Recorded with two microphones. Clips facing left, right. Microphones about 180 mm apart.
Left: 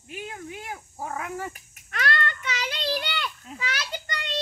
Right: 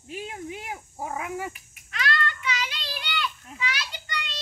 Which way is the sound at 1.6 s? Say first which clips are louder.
Left 2 dB; 55° left (ahead or behind).